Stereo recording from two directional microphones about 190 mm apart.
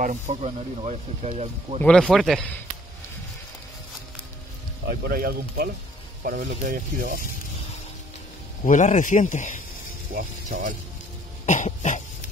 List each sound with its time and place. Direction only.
0.0 s speech: 40° right (ahead or behind)
1.8 s a man's voice: 5° left (ahead or behind)
4.8 s speech: 50° right (ahead or behind)
8.6 s speech: 40° left (ahead or behind)
10.1 s speech: 45° right (ahead or behind)
11.4 s cough: 40° left (ahead or behind)